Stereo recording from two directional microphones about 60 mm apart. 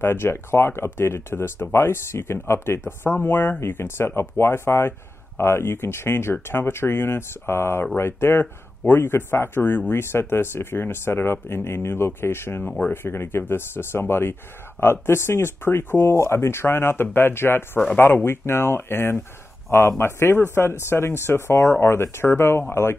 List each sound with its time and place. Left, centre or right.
0.0 s speech: left
3.2 s speech: left